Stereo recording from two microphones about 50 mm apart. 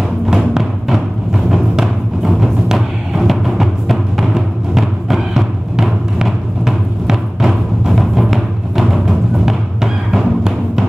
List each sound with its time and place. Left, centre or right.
0.3 s music: centre